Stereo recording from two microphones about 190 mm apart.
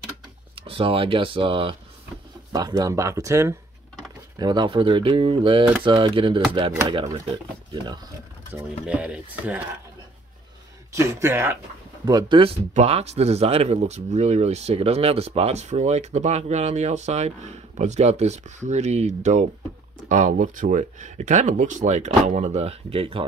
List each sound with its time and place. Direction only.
0.6 s speech: 30° right (ahead or behind)
8.5 s speech: 5° right (ahead or behind)
11.0 s speech: 15° right (ahead or behind)
12.1 s speech: 25° right (ahead or behind)